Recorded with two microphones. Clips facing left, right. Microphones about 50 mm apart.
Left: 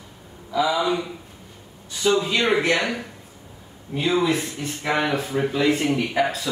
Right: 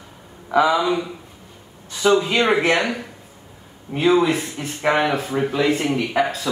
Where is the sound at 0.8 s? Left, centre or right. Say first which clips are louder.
Right 2 dB; centre.